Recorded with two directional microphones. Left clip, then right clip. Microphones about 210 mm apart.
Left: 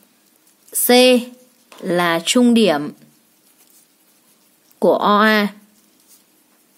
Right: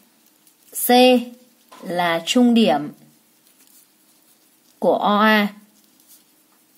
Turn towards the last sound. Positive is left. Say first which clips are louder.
# left 2 dB
turn(degrees=15)  # may be behind; listen again after turning